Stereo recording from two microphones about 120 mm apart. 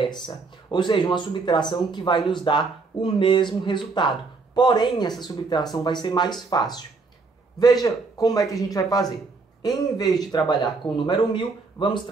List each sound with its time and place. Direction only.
0.7 s speech: 40° left (ahead or behind)